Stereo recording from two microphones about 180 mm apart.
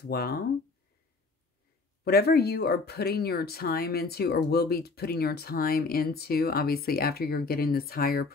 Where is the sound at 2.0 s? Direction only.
60° left (ahead or behind).